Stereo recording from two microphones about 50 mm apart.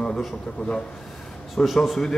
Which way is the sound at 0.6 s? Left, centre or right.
Left.